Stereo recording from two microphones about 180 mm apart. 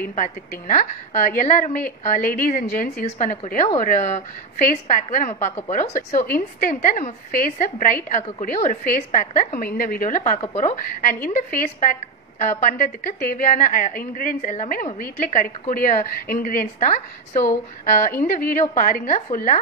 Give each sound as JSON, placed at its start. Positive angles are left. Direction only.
{"t": 0.1, "sound": "a woman's voice", "side_deg": 45}
{"t": 10.4, "sound": "speech", "side_deg": 35}
{"t": 11.2, "sound": "a woman's voice", "side_deg": 55}